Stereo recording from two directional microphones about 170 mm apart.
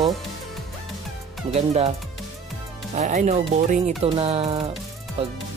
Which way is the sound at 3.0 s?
45° right (ahead or behind).